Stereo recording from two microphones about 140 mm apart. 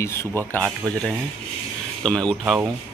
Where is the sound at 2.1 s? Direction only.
5° left (ahead or behind).